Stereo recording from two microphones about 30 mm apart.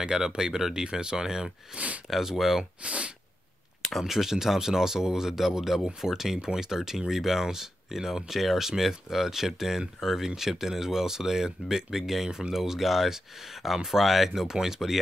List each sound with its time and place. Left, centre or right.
0.0 s speech: right
1.7 s speech: right
2.0 s speech: centre
2.8 s speech: right
4.0 s speech: centre